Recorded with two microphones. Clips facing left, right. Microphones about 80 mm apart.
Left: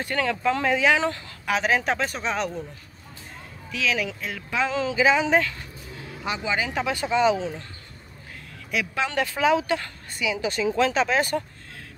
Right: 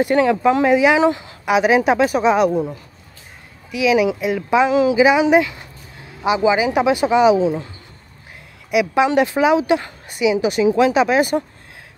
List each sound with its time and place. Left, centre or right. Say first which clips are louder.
0.0 s a woman's voice: right 10 dB; centre
3.7 s a woman's voice: right 11 dB; centre
8.6 s a woman's voice: right 11 dB; centre